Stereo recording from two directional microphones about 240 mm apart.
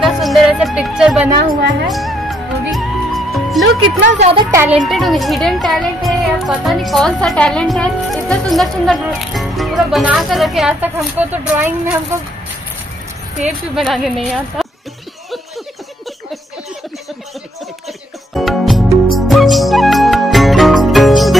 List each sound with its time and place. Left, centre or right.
0.0 s music: centre
4.2 s speech: right
4.6 s a woman's voice: centre
13.7 s a woman's voice: centre
18.3 s music: centre